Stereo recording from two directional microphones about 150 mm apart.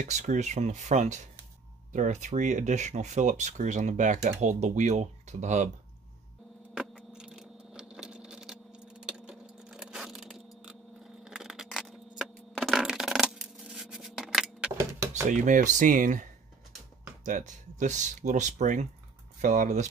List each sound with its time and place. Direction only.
0.0 s speech: 55° right (ahead or behind)
6.7 s a sound: 5° right (ahead or behind)
11.2 s scissors: 5° right (ahead or behind)
14.8 s drawer open or close: 20° right (ahead or behind)
15.2 s speech: 60° right (ahead or behind)